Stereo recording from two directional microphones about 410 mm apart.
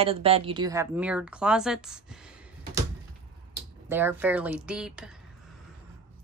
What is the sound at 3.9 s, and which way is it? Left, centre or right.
Speech, centre.